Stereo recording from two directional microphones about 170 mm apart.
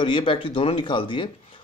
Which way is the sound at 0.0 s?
30° left (ahead or behind).